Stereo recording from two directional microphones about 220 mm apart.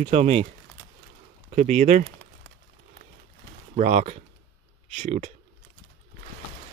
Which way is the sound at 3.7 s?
30° right (ahead or behind).